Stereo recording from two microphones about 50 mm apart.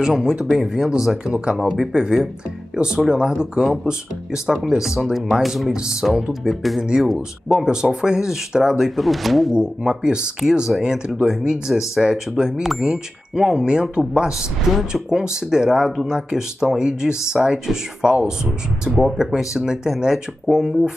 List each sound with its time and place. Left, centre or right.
0.0 s speech: centre
6.2 s speech: centre
9.6 s speech: centre
14.7 s speech: centre